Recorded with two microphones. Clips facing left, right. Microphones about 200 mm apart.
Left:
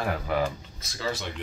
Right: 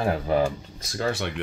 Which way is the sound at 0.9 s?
55° right (ahead or behind).